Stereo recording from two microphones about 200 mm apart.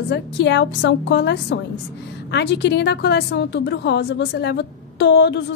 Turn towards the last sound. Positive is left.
turn(degrees=60)  # may be behind; listen again after turning